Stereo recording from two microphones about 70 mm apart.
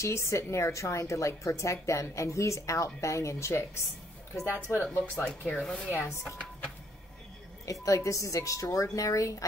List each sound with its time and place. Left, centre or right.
0.0 s a woman's voice: left
5.1 s speech: centre
7.6 s a woman's voice: left